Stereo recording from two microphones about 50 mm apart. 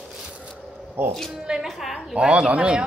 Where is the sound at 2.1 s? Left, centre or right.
Centre.